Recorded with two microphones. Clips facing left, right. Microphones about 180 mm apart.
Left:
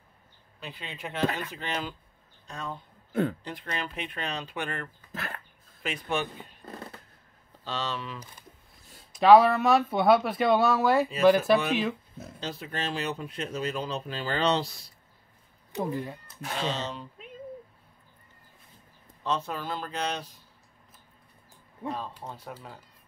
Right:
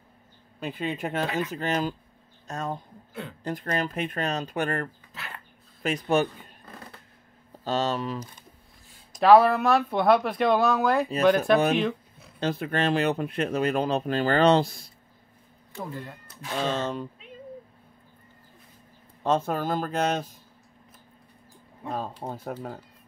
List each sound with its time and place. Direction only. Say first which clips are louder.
0.6 s speech: right 10 dB; 50° right (ahead or behind)
3.1 s a woman's voice: left 11 dB; 45° left (ahead or behind)
3.4 s speech: right 7 dB; 45° right (ahead or behind)
5.1 s dog: left 4 dB; 45° left (ahead or behind)
5.8 s a man's voice: right 7 dB; 45° right (ahead or behind)
7.6 s speech: right 7 dB; 45° right (ahead or behind)
9.2 s speech: right 1 dB; centre (ahead or behind)
12.4 s speech: right 9 dB; 55° right (ahead or behind)
15.7 s speech: left 5 dB; 15° left (ahead or behind)
16.5 s speech: right 5 dB; 50° right (ahead or behind)
19.2 s speech: right 6 dB; 50° right (ahead or behind)
21.9 s speech: right 5 dB; 45° right (ahead or behind)